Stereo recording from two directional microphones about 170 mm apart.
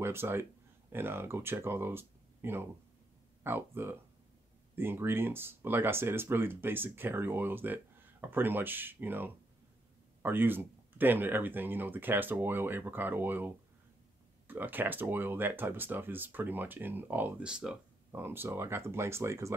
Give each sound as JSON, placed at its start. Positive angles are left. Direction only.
{"t": 0.0, "sound": "speech", "side_deg": -15}
{"t": 14.5, "sound": "speech", "side_deg": -10}